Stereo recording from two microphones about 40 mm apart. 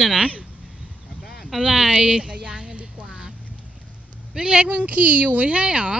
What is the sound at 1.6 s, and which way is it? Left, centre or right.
Speech, centre.